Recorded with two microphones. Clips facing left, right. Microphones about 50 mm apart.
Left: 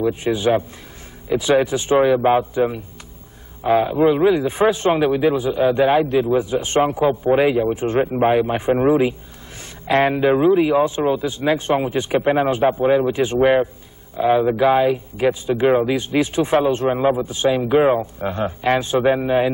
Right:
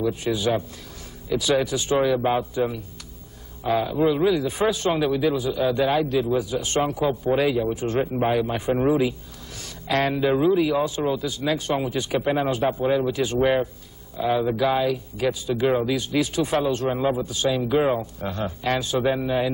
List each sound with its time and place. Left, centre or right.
0.0 s speech: left